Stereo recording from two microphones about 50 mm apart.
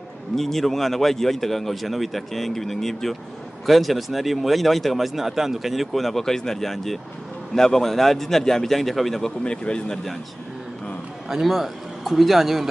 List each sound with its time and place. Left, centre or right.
0.4 s speech: centre
9.4 s speech: centre
11.2 s a man's voice: centre